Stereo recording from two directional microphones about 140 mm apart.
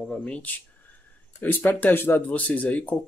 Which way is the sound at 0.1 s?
10° left (ahead or behind).